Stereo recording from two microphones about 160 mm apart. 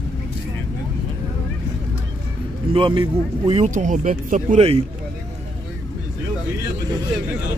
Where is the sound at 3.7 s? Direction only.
55° right (ahead or behind).